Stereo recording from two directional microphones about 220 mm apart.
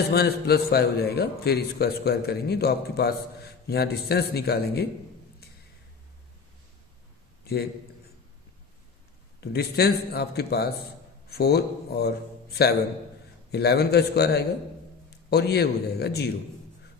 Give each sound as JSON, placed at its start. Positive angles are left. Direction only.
{"t": 0.1, "sound": "a man's voice", "side_deg": 45}
{"t": 9.4, "sound": "a man's voice", "side_deg": 45}